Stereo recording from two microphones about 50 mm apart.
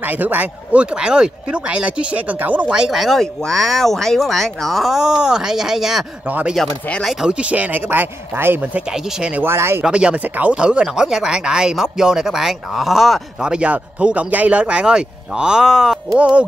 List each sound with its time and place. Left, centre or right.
0.0 s a man's voice: right
1.0 s speech: centre
2.9 s speech: centre
7.2 s a man's voice: right
9.4 s speech: right
9.8 s speech: right; by 13.2 s centre
13.4 s speech: centre
16.2 s speech: right